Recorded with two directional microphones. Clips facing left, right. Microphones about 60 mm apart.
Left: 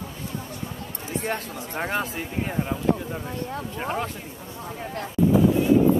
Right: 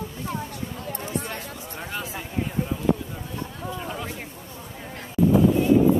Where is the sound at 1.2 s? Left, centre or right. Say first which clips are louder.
Left 5 dB; left.